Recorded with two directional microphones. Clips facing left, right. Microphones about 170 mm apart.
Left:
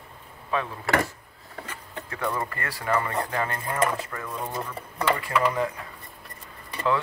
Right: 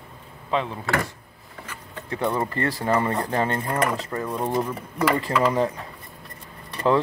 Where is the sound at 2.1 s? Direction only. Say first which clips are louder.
Right 5 dB; 25° right (ahead or behind).